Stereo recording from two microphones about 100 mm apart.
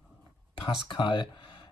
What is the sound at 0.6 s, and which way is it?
Speech, 50° left (ahead or behind).